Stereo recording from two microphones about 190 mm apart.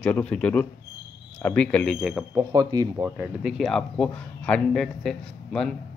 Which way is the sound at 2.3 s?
20° right (ahead or behind).